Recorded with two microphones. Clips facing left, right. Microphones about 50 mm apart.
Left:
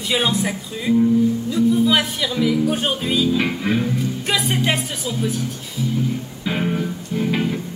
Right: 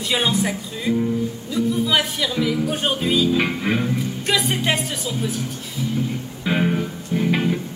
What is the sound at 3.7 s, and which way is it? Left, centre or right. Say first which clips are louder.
Music: left 3 dB; centre.